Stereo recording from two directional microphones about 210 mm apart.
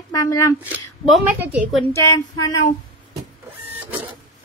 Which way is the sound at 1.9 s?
15° left (ahead or behind).